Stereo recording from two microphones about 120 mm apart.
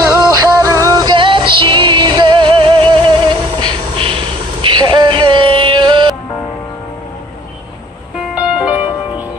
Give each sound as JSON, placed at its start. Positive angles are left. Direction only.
{"t": 0.2, "sound": "music", "side_deg": -25}
{"t": 8.4, "sound": "music", "side_deg": -10}